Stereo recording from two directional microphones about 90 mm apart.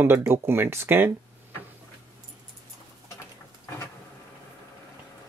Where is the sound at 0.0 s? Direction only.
25° right (ahead or behind).